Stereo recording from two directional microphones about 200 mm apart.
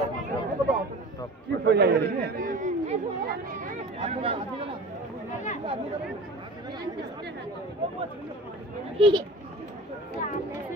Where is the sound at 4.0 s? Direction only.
30° right (ahead or behind).